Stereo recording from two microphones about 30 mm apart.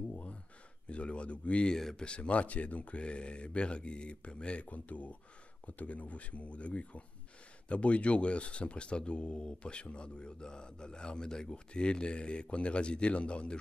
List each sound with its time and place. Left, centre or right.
0.8 s speech: left
3.0 s speech: left
4.6 s speech: left